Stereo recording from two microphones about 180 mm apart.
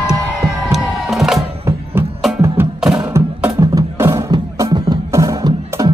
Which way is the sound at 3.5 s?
20° right (ahead or behind).